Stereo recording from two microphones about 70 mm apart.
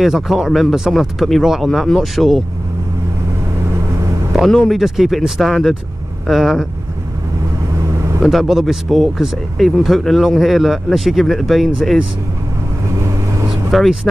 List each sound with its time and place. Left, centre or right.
0.0 s speech: centre
4.6 s speech: centre
7.9 s vehicle: right
8.2 s speech: centre
13.7 s speech: centre